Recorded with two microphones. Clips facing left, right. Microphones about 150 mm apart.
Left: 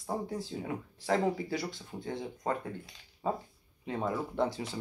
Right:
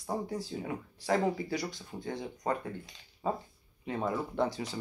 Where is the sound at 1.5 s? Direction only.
25° left (ahead or behind).